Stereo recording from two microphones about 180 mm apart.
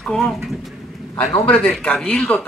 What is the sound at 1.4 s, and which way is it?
Speech, 5° left (ahead or behind).